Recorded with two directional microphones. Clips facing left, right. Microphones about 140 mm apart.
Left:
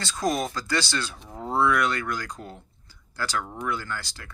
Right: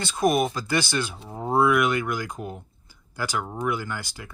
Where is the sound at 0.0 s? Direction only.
20° right (ahead or behind).